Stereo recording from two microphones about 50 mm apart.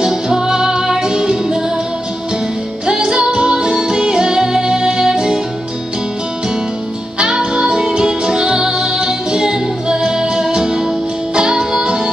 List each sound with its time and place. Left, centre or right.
0.0 s music: centre
2.9 s music: centre
7.2 s music: centre